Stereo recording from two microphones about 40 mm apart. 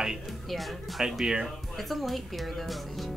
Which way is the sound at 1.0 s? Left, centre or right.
Centre.